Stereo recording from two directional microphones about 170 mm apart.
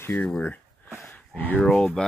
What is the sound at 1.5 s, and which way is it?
Speech, 5° left (ahead or behind).